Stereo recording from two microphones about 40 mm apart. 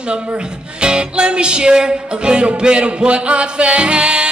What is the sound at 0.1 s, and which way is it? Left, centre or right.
Speech, right.